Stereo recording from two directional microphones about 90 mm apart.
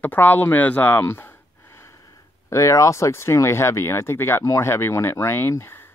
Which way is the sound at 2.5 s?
35° left (ahead or behind).